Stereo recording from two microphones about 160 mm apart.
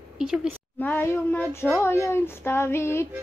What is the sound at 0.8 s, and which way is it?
Child singing, 10° left (ahead or behind).